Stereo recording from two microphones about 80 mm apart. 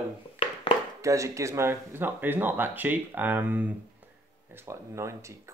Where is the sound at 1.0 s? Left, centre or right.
Right.